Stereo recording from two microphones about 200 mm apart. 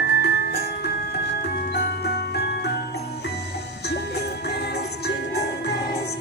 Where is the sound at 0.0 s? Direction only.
55° left (ahead or behind).